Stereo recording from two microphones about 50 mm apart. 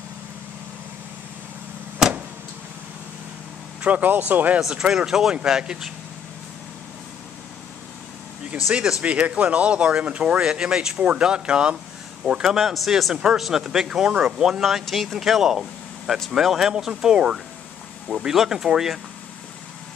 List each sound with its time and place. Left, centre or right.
2.0 s vehicle: centre
3.8 s speech: right
4.6 s speech: centre
9.0 s speech: right
12.3 s speech: centre
13.1 s speech: centre